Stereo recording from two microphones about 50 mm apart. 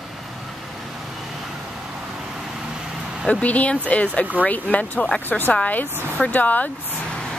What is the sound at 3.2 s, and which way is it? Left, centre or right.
Speech, left.